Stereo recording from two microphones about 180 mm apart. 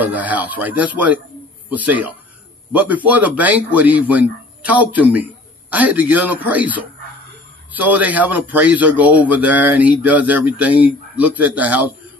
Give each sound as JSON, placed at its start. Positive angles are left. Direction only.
{"t": 0.0, "sound": "a man's voice", "side_deg": -10}